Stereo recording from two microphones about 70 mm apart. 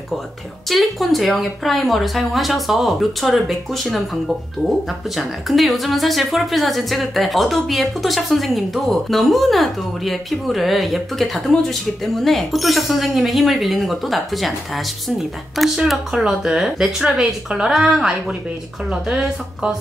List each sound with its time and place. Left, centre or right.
0.7 s speech: centre